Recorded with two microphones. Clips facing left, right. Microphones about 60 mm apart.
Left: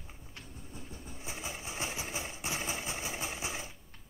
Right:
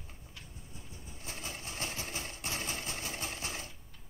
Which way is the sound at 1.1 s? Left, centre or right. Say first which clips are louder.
Left 2 dB; centre.